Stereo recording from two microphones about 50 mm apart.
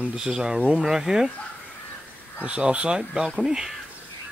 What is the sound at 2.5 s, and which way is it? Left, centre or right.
Speech, right.